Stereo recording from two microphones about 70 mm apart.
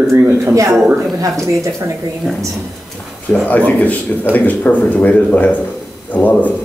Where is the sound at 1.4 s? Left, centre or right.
Right.